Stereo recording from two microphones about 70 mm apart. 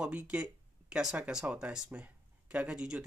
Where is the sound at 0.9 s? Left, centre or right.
Centre.